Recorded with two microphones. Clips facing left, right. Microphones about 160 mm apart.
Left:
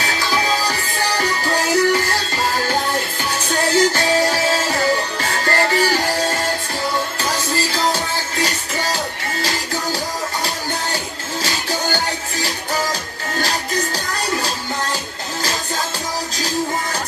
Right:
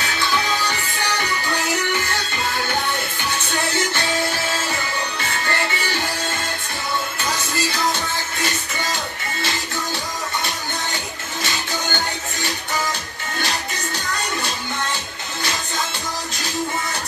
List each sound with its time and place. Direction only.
0.0 s music: 35° left (ahead or behind)
11.4 s music: 35° left (ahead or behind)